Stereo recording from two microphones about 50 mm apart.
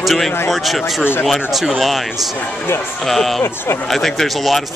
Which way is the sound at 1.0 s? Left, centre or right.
Left.